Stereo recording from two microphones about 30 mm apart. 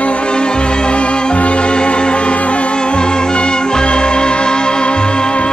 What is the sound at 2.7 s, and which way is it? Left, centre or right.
Music, left.